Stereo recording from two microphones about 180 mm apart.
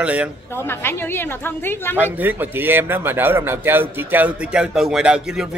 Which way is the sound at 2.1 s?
10° right (ahead or behind).